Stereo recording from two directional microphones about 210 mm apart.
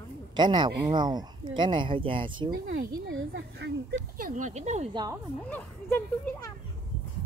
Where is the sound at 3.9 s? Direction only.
40° right (ahead or behind).